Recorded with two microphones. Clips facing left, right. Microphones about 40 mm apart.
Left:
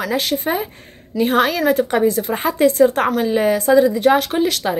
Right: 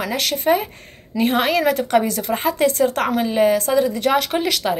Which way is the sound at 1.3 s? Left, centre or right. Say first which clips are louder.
Left 2 dB; centre.